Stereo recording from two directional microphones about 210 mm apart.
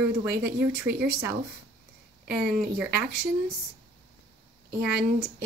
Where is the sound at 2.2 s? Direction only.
50° right (ahead or behind).